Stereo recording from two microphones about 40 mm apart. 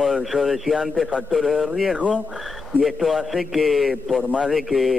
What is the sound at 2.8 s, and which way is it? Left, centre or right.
Speech, centre.